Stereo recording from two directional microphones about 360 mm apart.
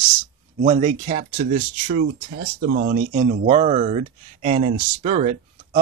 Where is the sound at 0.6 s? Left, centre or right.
Centre.